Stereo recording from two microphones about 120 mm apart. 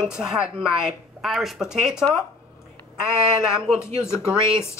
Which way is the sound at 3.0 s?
5° right (ahead or behind).